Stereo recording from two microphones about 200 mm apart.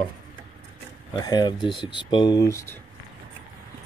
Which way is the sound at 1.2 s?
20° left (ahead or behind).